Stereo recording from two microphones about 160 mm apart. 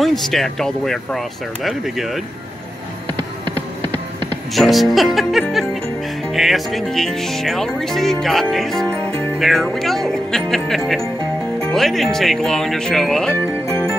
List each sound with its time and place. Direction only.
0.0 s speech: centre (ahead or behind)
3.2 s music: 30° right (ahead or behind)
4.6 s speech: centre (ahead or behind)
5.5 s music: centre (ahead or behind)
6.3 s speech: centre (ahead or behind)
13.4 s music: 15° left (ahead or behind)